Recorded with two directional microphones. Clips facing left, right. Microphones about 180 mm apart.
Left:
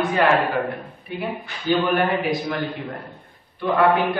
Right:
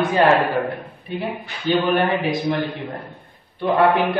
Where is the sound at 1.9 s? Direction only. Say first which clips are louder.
Right 1 dB; 25° right (ahead or behind).